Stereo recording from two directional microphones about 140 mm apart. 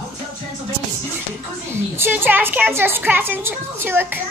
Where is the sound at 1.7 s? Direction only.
15° right (ahead or behind).